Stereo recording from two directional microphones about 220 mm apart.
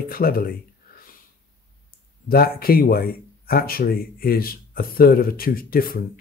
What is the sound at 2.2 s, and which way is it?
Speech, 45° left (ahead or behind).